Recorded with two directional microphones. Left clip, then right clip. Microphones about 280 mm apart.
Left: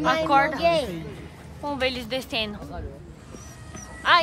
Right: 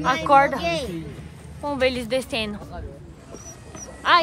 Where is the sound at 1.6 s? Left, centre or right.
Centre.